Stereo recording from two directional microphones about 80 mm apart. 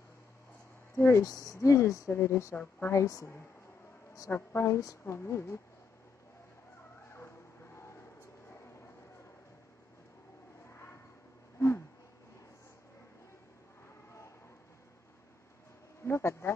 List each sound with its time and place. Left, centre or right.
0.9 s speech: left
1.2 s speech: left
2.5 s a woman's voice: left
2.9 s speech: left
7.1 s vehicle: left
16.0 s bee: left